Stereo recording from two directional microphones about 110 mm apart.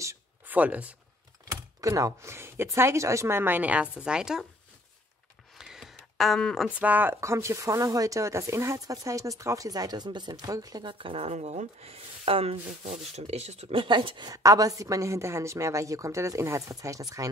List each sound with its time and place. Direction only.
0.5 s speech: 15° right (ahead or behind)
1.8 s a woman's voice: 30° right (ahead or behind); by 4.5 s 5° right (ahead or behind)
5.6 s a sound: 5° right (ahead or behind)
6.8 s a woman's voice: 15° right (ahead or behind); by 13.7 s 75° right (ahead or behind)
13.7 s speech: 50° right (ahead or behind)
14.3 s a woman's voice: 30° right (ahead or behind)